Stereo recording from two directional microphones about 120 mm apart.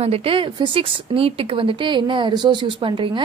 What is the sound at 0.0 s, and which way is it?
Speech, 55° right (ahead or behind).